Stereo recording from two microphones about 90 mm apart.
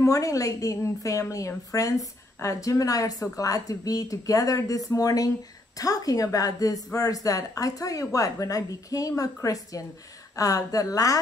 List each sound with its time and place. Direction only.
0.0 s a woman's voice: 35° left (ahead or behind)